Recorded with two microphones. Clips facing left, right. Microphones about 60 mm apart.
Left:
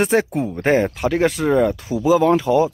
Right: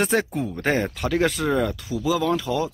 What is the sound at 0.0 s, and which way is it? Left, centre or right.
Speech, centre.